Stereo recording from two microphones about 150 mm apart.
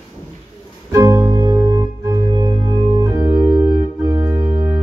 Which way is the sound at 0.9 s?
15° right (ahead or behind).